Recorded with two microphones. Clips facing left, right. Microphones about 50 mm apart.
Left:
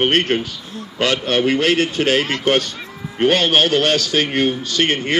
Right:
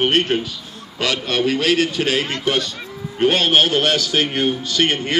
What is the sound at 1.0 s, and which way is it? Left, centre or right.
A man's voice, left.